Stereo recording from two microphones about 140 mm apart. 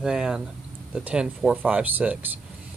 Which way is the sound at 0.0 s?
5° right (ahead or behind).